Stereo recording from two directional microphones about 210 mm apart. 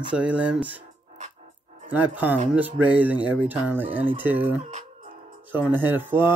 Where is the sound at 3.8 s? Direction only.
25° right (ahead or behind).